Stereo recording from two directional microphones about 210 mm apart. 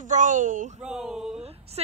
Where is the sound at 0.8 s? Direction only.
5° right (ahead or behind).